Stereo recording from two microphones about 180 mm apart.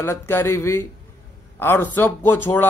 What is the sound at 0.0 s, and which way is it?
A man's voice, 15° left (ahead or behind).